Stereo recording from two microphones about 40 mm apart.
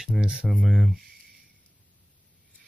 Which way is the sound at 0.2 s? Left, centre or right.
Right.